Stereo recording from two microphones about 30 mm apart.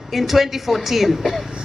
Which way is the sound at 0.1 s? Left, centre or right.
Centre.